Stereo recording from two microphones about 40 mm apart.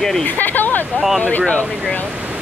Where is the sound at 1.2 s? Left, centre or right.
Left.